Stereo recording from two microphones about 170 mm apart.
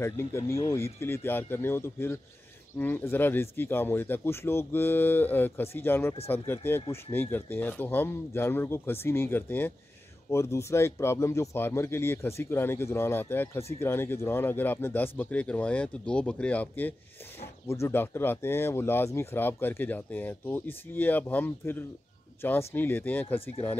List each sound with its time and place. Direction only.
0.0 s speech: 15° left (ahead or behind)